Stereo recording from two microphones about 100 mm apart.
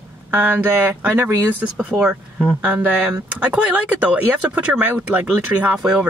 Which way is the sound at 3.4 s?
15° right (ahead or behind).